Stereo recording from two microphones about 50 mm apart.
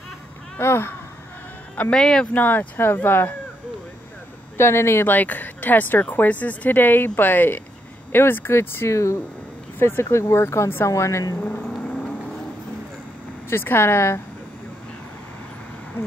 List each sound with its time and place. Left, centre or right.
0.6 s speech: left
1.9 s speech: centre
2.3 s speech: left
4.6 s speech: left
5.0 s speech: left
9.8 s speech: left
10.2 s speech: left
13.5 s speech: left